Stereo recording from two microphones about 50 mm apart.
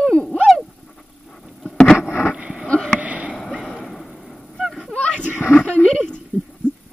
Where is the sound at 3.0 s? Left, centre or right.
Right.